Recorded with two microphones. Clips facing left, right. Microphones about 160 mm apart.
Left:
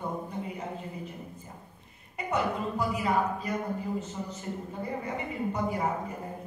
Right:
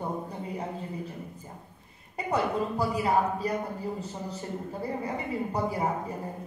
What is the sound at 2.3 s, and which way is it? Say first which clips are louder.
Speech: right 2 dB; 35° right (ahead or behind).